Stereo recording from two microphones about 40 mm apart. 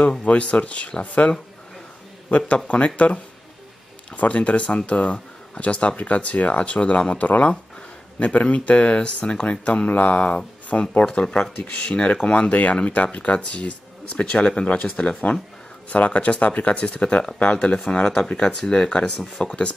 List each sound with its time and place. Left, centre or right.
0.2 s speech: left
2.2 s speech: left
4.2 s speech: left
9.8 s speech: left
14.8 s speech: left